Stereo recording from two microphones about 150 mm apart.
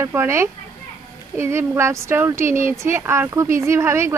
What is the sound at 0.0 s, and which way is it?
Speech, 15° right (ahead or behind).